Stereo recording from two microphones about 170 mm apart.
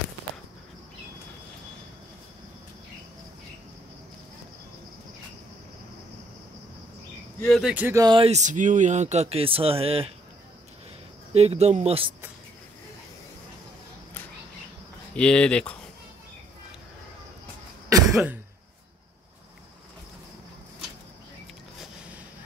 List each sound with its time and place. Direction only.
7.4 s speech: centre (ahead or behind)
7.7 s speech: 10° right (ahead or behind)
8.0 s speech: 25° right (ahead or behind)
8.3 s speech: 45° right (ahead or behind)
11.3 s speech: 40° right (ahead or behind)
15.1 s speech: 5° left (ahead or behind)
18.1 s throat clearing: 10° right (ahead or behind)